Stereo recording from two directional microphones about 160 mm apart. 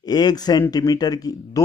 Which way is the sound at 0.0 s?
25° left (ahead or behind).